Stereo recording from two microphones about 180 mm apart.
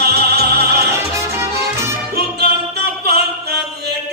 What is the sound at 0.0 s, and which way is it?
Opera, 65° right (ahead or behind).